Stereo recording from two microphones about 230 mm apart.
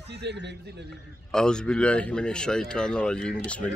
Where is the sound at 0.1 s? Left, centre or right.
Right.